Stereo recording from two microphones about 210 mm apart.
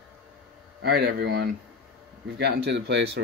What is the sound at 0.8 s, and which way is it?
Speech, 50° right (ahead or behind).